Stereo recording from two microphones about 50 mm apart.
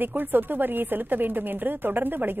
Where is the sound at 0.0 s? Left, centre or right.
Right.